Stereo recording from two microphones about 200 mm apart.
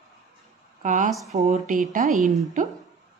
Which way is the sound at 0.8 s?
40° right (ahead or behind).